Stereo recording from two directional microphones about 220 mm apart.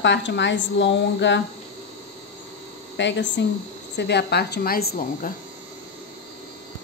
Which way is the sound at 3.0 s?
55° left (ahead or behind).